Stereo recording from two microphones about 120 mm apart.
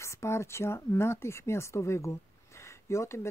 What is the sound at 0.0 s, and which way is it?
Speech, 25° left (ahead or behind).